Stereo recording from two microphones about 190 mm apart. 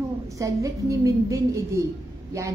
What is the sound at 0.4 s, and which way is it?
A woman's voice, 15° right (ahead or behind).